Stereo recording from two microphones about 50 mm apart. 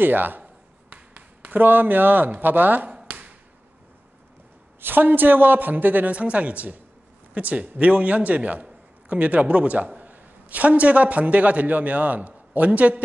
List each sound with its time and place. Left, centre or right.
0.0 s a woman's voice: right
0.4 s a sound: right
4.8 s a woman's voice: right
6.1 s a woman's voice: right